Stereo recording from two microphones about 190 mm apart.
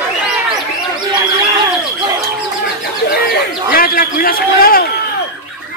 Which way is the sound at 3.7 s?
50° left (ahead or behind).